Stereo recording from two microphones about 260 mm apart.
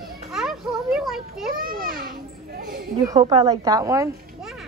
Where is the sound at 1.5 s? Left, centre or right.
Right.